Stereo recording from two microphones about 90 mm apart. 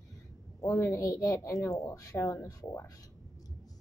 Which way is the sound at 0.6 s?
30° left (ahead or behind).